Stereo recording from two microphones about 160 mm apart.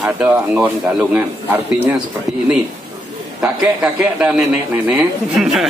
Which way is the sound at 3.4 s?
5° right (ahead or behind).